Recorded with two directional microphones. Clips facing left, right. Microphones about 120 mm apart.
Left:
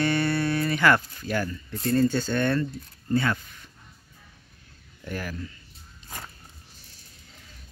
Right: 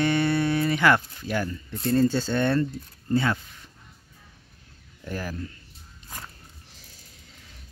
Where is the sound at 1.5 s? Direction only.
30° right (ahead or behind).